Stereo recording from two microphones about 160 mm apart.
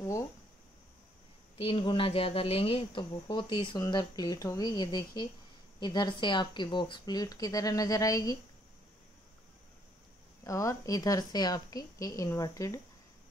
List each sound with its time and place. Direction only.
1.6 s speech: 35° left (ahead or behind)
10.4 s speech: 20° left (ahead or behind)